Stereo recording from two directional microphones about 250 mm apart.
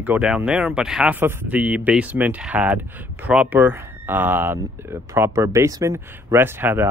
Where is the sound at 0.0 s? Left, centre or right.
Centre.